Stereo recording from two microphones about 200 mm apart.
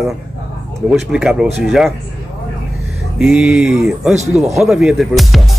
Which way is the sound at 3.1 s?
5° right (ahead or behind).